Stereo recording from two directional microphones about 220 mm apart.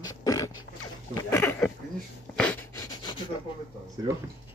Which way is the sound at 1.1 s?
10° left (ahead or behind).